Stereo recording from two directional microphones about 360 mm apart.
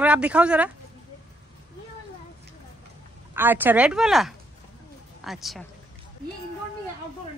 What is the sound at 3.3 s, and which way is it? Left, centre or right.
Speech, centre.